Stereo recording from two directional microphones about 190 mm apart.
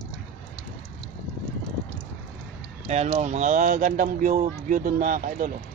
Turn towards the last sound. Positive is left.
turn(degrees=-45)  # may be behind; listen again after turning